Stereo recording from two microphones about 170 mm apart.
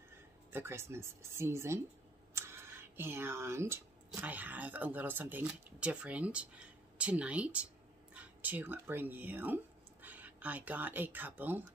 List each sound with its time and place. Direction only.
0.5 s speech: 15° right (ahead or behind)